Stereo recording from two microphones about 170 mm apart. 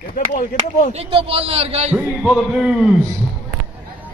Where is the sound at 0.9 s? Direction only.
35° right (ahead or behind).